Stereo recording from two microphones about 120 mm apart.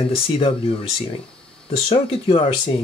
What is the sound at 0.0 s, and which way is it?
Speech, 50° left (ahead or behind).